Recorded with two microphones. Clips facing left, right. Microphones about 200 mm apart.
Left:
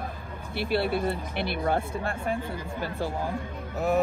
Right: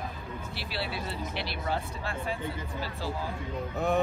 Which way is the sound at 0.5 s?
55° left (ahead or behind).